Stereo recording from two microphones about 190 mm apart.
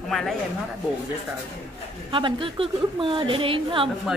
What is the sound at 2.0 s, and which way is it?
A woman's voice, 25° right (ahead or behind).